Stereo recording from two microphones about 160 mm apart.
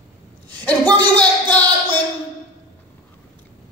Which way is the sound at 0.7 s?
25° right (ahead or behind).